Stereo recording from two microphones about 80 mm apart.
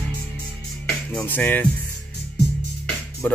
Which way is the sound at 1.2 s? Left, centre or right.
Left.